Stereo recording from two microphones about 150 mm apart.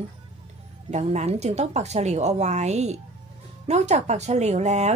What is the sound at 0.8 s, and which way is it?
Speech, 50° right (ahead or behind).